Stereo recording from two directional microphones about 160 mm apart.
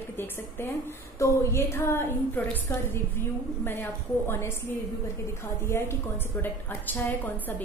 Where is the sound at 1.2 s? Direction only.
15° left (ahead or behind).